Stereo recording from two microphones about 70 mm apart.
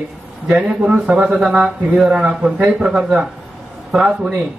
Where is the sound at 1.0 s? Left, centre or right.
Centre.